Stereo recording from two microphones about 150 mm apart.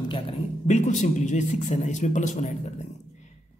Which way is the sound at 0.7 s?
55° left (ahead or behind).